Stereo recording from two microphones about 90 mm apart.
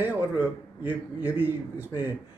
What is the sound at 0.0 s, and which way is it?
A man's voice, 20° right (ahead or behind).